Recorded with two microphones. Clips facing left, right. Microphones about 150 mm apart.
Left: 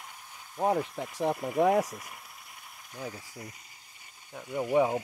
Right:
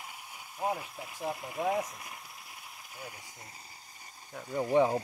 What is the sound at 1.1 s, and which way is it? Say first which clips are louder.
Speech: left 9 dB; 60° left (ahead or behind).